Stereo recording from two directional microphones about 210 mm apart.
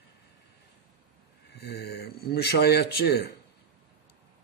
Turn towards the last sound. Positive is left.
turn(degrees=50)  # may be behind; listen again after turning